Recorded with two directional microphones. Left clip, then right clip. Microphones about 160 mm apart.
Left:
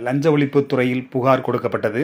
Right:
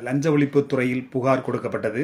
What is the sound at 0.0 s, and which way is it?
Speech, 25° left (ahead or behind).